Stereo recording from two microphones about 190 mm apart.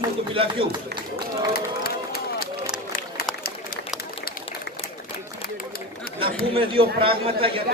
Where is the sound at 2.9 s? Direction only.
55° left (ahead or behind).